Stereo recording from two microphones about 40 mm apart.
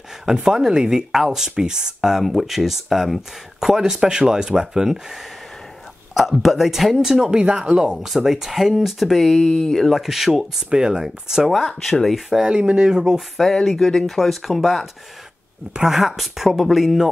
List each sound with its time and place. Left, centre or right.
0.2 s speech: centre
6.1 s speech: centre
7.2 s speech: right
8.2 s speech: centre
9.1 s speech: centre
9.9 s speech: centre
11.9 s speech: centre
12.4 s speech: right
13.7 s speech: centre
15.7 s speech: centre